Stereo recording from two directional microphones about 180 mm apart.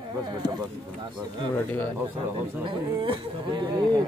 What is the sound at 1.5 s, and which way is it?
Speech, 10° left (ahead or behind).